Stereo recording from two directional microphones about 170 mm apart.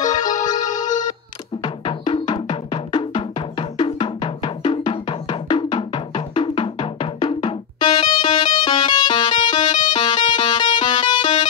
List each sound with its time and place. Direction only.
0.0 s music: 25° left (ahead or behind)
1.6 s music: 30° left (ahead or behind)
9.7 s music: 45° left (ahead or behind)
9.9 s music: 25° left (ahead or behind)